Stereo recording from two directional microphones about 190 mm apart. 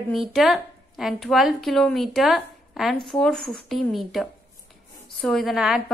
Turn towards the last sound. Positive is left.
turn(degrees=-5)  # may be behind; listen again after turning